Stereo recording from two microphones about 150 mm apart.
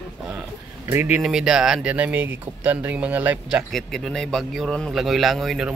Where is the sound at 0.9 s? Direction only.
10° right (ahead or behind).